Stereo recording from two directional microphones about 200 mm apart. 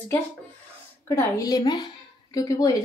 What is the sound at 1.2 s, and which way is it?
A woman's voice, 15° left (ahead or behind).